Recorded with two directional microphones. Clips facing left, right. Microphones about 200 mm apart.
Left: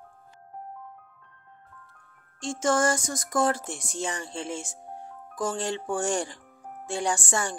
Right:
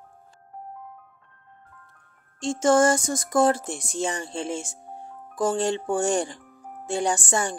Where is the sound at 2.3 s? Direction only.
25° right (ahead or behind).